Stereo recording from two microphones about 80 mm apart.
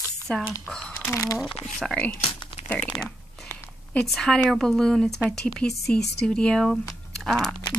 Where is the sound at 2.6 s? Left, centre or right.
Left.